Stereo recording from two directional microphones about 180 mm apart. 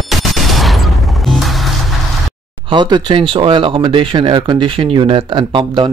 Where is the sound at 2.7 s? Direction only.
25° right (ahead or behind).